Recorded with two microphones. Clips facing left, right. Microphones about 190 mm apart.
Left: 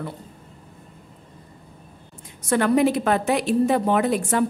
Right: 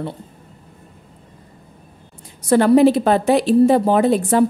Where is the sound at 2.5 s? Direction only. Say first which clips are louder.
Right 7 dB; 30° right (ahead or behind).